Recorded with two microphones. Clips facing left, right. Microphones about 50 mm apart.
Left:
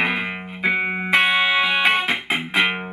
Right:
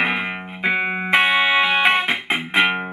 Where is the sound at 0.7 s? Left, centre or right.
Right.